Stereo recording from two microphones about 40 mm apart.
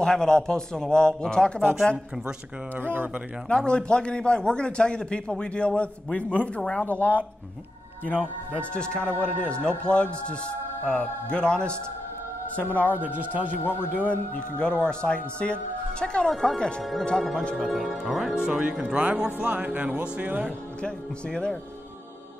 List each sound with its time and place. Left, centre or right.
0.0 s a man's voice: centre
2.7 s speech: right
3.4 s a man's voice: left
6.9 s a man's voice: left
8.7 s a man's voice: left
12.7 s a man's voice: left
13.0 s a man's voice: right
13.7 s a man's voice: left
14.6 s a man's voice: left
17.2 s a man's voice: centre
18.3 s speech: centre; by 20.5 s right
20.8 s a man's voice: centre